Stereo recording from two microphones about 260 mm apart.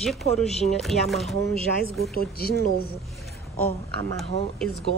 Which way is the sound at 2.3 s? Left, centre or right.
Left.